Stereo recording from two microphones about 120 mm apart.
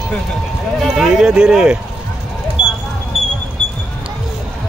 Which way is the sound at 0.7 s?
Centre (ahead or behind).